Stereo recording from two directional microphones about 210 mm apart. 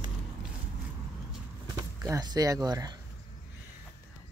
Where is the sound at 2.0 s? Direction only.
15° right (ahead or behind).